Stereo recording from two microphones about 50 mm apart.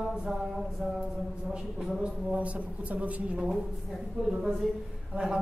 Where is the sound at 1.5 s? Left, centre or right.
Centre.